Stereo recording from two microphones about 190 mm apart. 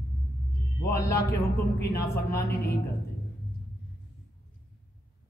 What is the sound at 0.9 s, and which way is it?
Music, 15° left (ahead or behind).